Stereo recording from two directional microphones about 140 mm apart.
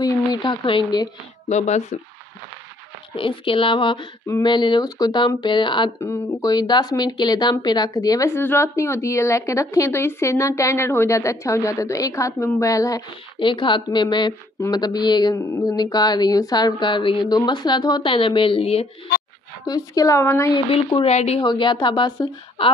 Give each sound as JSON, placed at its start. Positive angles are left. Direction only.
{"t": 0.0, "sound": "speech", "side_deg": 30}
{"t": 1.5, "sound": "speech", "side_deg": 55}
{"t": 3.2, "sound": "speech", "side_deg": 40}
{"t": 5.9, "sound": "speech", "side_deg": 25}
{"t": 13.4, "sound": "speech", "side_deg": 35}
{"t": 19.6, "sound": "speech", "side_deg": 25}
{"t": 20.5, "sound": "speech", "side_deg": 40}
{"t": 21.4, "sound": "speech", "side_deg": 35}